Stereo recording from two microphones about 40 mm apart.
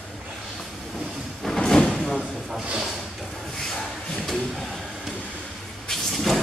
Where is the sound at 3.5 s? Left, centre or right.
Centre.